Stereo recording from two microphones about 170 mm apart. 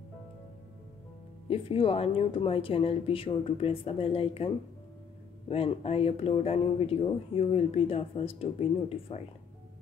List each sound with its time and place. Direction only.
1.5 s speech: 35° left (ahead or behind)
5.5 s speech: 35° left (ahead or behind)